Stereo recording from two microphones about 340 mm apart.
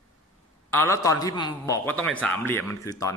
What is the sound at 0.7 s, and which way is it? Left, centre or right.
A man's voice, centre.